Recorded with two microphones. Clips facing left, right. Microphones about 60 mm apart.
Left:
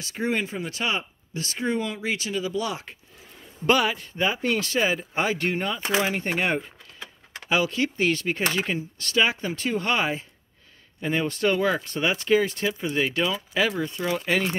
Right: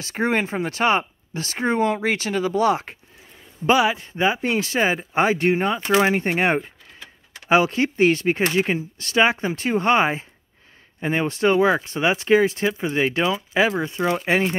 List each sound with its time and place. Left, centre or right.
0.0 s speech: right
3.6 s speech: centre
13.7 s speech: right